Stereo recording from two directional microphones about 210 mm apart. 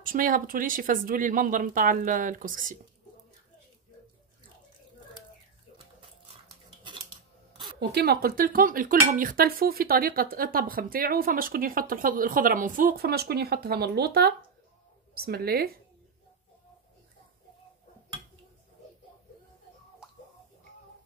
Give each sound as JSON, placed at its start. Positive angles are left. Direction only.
{"t": 0.0, "sound": "speech", "side_deg": -40}
{"t": 7.9, "sound": "speech", "side_deg": -50}